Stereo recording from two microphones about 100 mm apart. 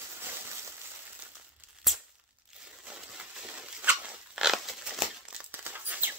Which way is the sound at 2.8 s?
5° right (ahead or behind).